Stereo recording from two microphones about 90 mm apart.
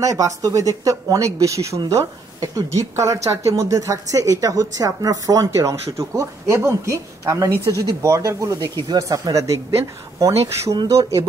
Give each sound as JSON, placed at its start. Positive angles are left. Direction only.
{"t": 0.0, "sound": "speech", "side_deg": -40}